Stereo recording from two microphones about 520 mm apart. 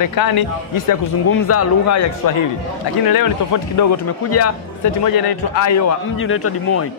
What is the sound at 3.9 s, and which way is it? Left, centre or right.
Speech, left.